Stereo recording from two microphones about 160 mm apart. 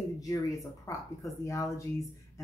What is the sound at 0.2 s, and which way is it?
A woman's voice, 20° left (ahead or behind).